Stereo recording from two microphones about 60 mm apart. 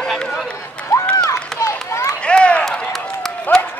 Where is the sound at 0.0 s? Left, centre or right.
Centre.